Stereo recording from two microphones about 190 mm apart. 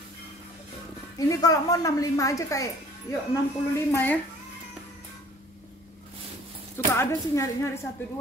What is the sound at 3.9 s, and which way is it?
Speech, 10° left (ahead or behind).